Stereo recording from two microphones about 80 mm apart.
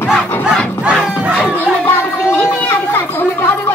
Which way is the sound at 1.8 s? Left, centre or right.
Left.